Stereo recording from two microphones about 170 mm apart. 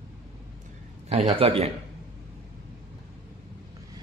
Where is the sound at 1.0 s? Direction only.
35° right (ahead or behind).